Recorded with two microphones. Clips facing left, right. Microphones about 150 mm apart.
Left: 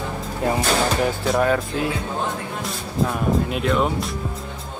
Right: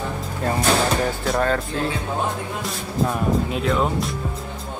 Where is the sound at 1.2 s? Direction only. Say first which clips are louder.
Left 3 dB; 5° left (ahead or behind).